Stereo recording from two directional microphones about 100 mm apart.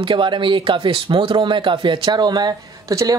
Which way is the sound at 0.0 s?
55° right (ahead or behind).